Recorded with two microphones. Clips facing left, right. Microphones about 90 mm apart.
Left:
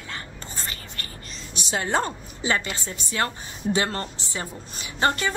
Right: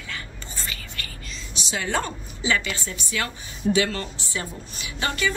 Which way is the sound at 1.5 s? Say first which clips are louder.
Left 2 dB; 40° left (ahead or behind).